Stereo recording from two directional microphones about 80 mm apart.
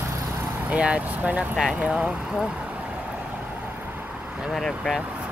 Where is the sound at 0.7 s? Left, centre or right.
Centre.